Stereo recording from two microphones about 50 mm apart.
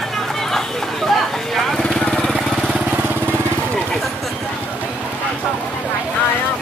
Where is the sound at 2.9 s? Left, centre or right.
Right.